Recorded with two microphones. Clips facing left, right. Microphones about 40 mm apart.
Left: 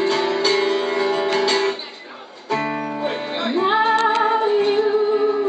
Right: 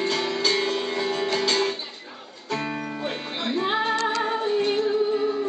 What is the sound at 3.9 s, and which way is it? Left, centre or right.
Music, left.